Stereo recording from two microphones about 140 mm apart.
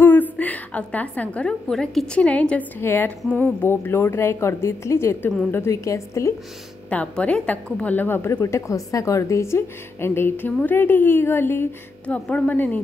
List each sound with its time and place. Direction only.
0.0 s a woman's voice: 15° left (ahead or behind)
6.9 s a woman's voice: 10° left (ahead or behind)